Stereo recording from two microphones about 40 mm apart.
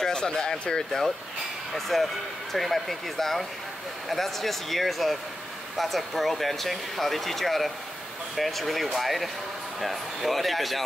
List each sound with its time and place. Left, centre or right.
0.0 s speech: centre
1.7 s speech: centre